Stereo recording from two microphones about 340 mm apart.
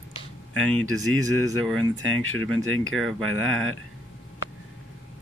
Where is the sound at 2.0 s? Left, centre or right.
Right.